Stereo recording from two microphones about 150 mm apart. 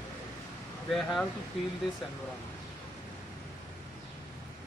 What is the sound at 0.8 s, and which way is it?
Speech, centre (ahead or behind).